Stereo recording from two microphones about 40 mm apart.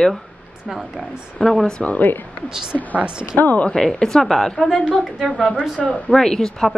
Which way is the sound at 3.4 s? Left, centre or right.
Left.